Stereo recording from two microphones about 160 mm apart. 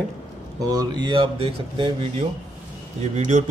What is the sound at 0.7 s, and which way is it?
Speech, 30° right (ahead or behind).